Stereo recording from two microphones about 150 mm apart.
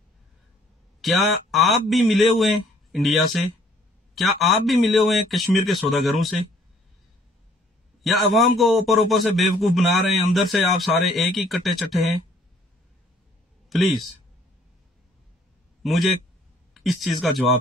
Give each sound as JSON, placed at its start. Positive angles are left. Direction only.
{"t": 1.0, "sound": "a man's voice", "side_deg": 0}
{"t": 8.0, "sound": "a man's voice", "side_deg": 0}
{"t": 13.7, "sound": "a man's voice", "side_deg": 0}
{"t": 15.8, "sound": "a man's voice", "side_deg": 0}